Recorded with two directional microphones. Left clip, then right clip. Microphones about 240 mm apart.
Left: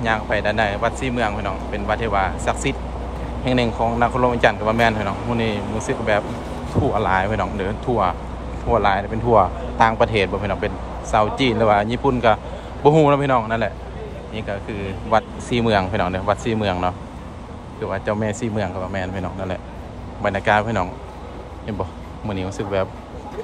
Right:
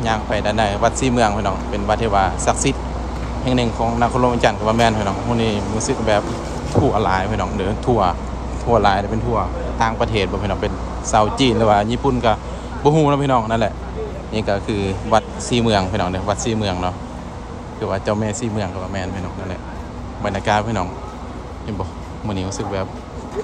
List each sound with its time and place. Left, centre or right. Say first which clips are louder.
0.0 s speech: even; centre
9.3 s speech: left 10 dB; centre
14.3 s speech: right 8 dB; centre
15.5 s speech: right 1 dB; centre
20.2 s speech: left 1 dB; centre
22.3 s speech: left 1 dB; centre